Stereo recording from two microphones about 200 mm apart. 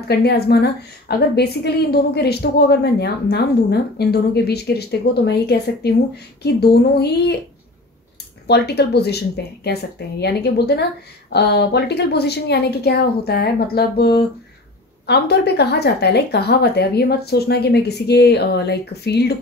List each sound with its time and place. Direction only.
0.1 s a woman's voice: 55° left (ahead or behind)
8.5 s a woman's voice: 55° left (ahead or behind)